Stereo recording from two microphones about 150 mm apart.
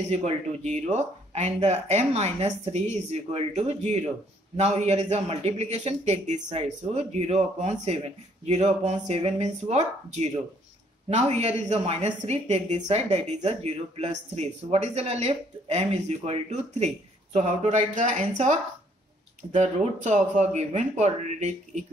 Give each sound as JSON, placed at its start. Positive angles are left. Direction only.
{"t": 0.1, "sound": "a woman's voice", "side_deg": -50}